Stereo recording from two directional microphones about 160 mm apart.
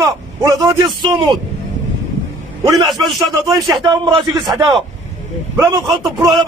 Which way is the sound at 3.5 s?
25° right (ahead or behind).